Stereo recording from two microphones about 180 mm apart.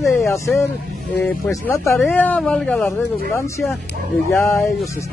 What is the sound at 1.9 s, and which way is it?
Speech, 5° left (ahead or behind).